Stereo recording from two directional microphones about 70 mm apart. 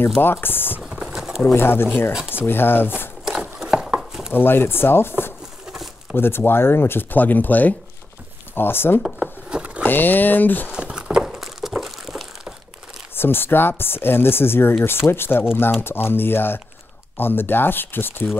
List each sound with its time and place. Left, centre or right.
0.2 s speech: left
0.7 s a sound: centre
1.6 s speech: left
3.3 s wood: centre
4.3 s speech: left
6.1 s speech: left
9.2 s a sound: centre
9.8 s speech: left
10.7 s a sound: centre
13.1 s speech: left